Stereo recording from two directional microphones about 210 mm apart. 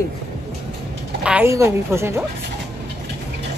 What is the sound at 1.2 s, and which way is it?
A woman's voice, 10° right (ahead or behind).